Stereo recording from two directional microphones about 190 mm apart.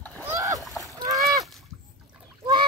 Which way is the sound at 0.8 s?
20° right (ahead or behind).